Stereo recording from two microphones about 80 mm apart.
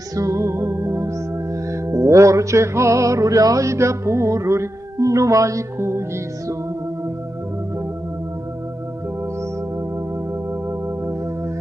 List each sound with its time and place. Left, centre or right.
0.1 s music: right